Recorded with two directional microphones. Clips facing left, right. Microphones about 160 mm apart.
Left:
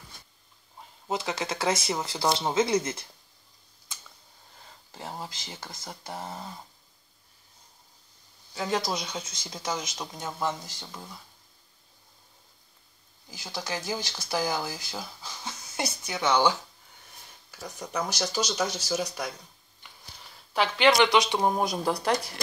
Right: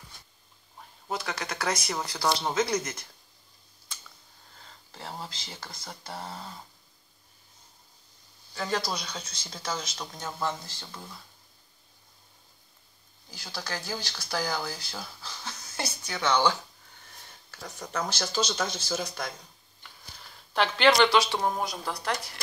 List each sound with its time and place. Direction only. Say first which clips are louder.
0.7 s speech: left 3 dB; 25° left (ahead or behind)
4.9 s speech: left 1 dB; 15° left (ahead or behind)
8.7 s speech: left 2 dB; 20° left (ahead or behind)
13.3 s speech: left 3 dB; 20° left (ahead or behind)
20.5 s speech: even; 10° left (ahead or behind)